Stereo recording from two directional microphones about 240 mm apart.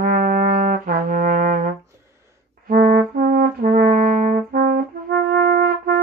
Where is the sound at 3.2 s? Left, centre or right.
Right.